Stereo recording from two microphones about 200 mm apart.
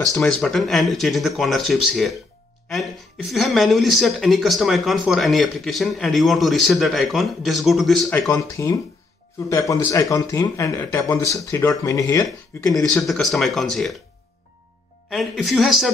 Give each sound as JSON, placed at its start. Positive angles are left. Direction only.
{"t": 0.2, "sound": "speech", "side_deg": 0}
{"t": 8.3, "sound": "speech", "side_deg": 15}
{"t": 13.0, "sound": "speech", "side_deg": 0}
{"t": 15.0, "sound": "speech", "side_deg": 0}